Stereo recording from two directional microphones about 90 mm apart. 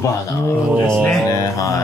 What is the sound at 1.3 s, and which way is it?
Speech, 40° left (ahead or behind).